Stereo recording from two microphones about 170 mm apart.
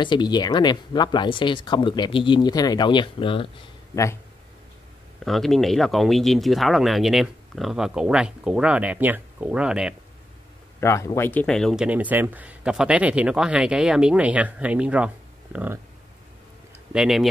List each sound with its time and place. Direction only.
0.0 s speech: 25° left (ahead or behind)
3.9 s speech: 15° left (ahead or behind)
5.2 s speech: centre (ahead or behind)
10.8 s speech: 15° left (ahead or behind); by 15.0 s 5° right (ahead or behind)
15.5 s a sound: 10° right (ahead or behind)
16.9 s speech: centre (ahead or behind)